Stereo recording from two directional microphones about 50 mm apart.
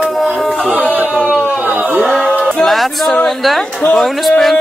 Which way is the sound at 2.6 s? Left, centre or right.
Centre.